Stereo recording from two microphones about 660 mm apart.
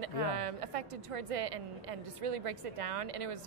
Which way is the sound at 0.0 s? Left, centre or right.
Right.